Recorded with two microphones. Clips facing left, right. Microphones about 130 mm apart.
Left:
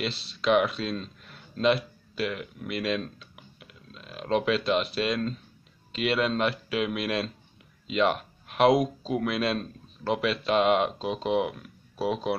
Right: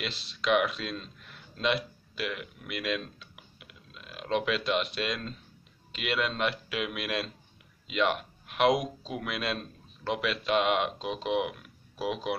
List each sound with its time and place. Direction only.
0.0 s speech: centre (ahead or behind)
2.7 s computer keyboard: centre (ahead or behind)
4.1 s a sound: centre (ahead or behind)
4.5 s a man's voice: centre (ahead or behind)
7.8 s a sound: centre (ahead or behind)
8.5 s a man's voice: centre (ahead or behind)
11.2 s speech: 40° left (ahead or behind)